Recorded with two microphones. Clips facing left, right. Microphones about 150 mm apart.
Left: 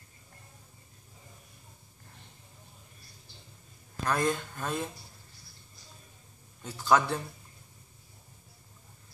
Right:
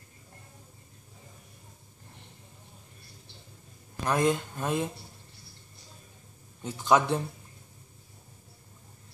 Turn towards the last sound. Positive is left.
turn(degrees=-20)  # may be behind; listen again after turning